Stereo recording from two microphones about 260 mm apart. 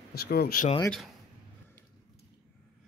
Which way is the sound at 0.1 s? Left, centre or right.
Left.